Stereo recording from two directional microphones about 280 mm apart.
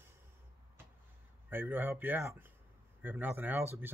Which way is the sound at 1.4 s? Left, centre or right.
Centre.